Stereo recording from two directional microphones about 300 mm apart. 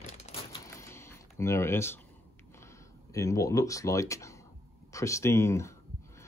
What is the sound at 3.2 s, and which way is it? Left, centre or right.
Speech, centre.